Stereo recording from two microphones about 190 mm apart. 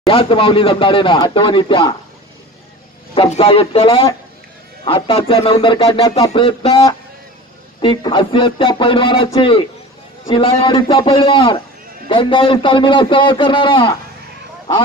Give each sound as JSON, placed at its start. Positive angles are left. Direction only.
{"t": 0.1, "sound": "speech", "side_deg": 25}
{"t": 3.2, "sound": "speech", "side_deg": 30}